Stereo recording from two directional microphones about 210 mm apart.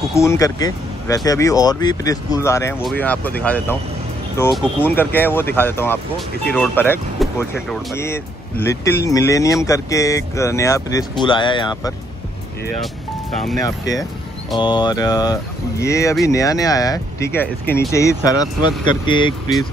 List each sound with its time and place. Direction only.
0.1 s speech: 15° left (ahead or behind)
13.7 s speech: 15° left (ahead or behind)